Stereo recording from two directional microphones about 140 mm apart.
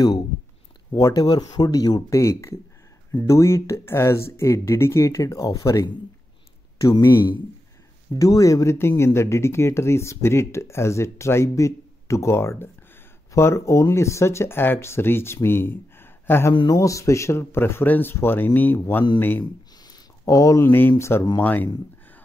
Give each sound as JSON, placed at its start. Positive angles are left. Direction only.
{"t": 0.9, "sound": "speech", "side_deg": 25}
{"t": 19.4, "sound": "a sound", "side_deg": 30}
{"t": 21.0, "sound": "speech", "side_deg": 20}